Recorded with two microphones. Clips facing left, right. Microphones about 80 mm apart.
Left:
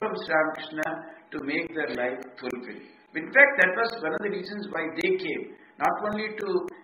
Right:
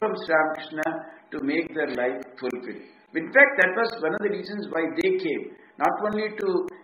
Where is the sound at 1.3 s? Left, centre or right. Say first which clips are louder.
Right 4 dB; right.